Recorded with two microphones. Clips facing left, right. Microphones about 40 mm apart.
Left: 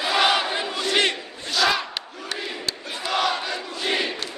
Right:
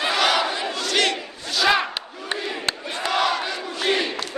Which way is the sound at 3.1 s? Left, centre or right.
Centre.